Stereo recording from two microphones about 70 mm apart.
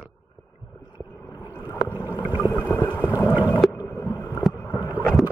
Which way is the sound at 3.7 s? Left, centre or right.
Left.